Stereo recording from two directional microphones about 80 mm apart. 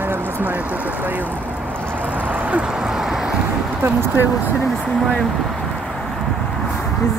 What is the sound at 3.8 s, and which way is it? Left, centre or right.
Speech, right.